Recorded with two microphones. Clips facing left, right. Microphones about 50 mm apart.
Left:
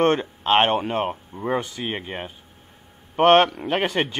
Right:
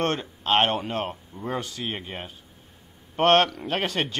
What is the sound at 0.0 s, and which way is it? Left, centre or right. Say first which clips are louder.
A man's voice: left 7 dB; left.